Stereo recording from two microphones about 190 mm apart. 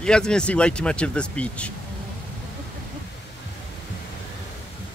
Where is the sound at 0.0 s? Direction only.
5° left (ahead or behind).